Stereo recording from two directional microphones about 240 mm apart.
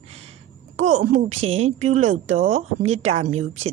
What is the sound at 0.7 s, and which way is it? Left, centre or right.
A woman's voice, right.